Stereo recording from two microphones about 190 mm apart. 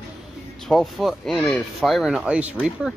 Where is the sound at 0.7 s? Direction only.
Centre (ahead or behind).